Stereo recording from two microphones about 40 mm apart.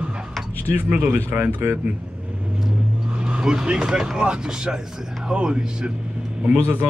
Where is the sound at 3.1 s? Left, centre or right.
Right.